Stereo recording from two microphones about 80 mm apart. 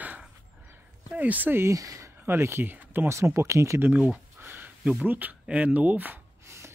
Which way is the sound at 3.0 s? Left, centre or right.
Right.